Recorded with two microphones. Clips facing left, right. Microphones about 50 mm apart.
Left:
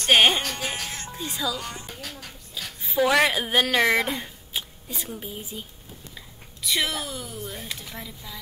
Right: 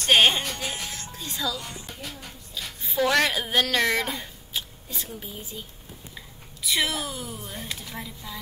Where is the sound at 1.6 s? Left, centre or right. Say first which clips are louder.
Left 2 dB; left.